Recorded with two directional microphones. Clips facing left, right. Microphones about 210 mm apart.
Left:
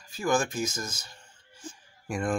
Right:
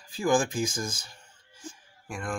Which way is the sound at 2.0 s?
20° left (ahead or behind).